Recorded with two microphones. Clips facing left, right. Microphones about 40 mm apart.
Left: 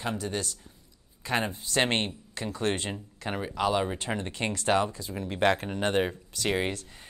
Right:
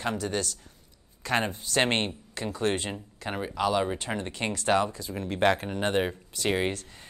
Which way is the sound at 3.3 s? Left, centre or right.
Centre.